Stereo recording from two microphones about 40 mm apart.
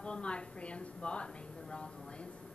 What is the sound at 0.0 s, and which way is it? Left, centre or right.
A woman's voice, left.